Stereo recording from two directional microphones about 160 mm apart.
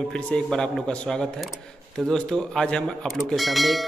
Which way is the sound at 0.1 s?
5° left (ahead or behind).